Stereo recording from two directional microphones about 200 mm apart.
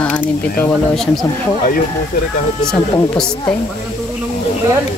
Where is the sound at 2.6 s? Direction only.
5° left (ahead or behind).